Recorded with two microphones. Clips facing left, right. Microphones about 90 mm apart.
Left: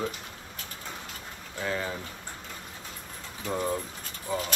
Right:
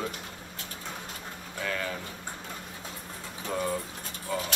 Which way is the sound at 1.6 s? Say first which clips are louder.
Left 1 dB; 25° left (ahead or behind).